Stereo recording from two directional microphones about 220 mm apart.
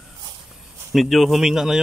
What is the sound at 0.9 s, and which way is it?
Speech, centre (ahead or behind).